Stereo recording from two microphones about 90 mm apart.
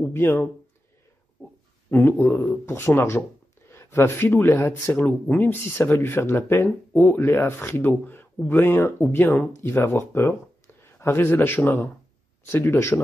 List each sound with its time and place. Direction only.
0.1 s speech: 25° left (ahead or behind)
1.4 s a sound: 20° left (ahead or behind)
1.9 s speech: 25° left (ahead or behind)